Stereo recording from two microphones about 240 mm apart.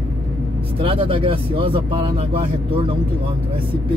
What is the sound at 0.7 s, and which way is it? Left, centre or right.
Speech, right.